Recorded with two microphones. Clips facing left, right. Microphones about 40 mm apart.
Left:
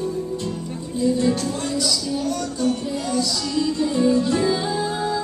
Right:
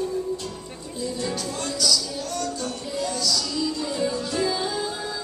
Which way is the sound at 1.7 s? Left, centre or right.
Left.